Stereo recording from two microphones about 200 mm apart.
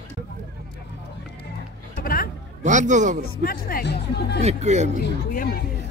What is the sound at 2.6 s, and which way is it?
Speech, 40° right (ahead or behind).